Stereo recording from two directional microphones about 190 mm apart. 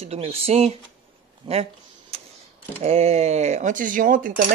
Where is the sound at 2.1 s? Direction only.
35° right (ahead or behind).